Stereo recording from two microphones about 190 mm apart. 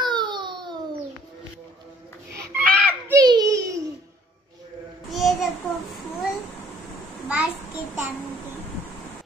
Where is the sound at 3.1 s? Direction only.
20° right (ahead or behind).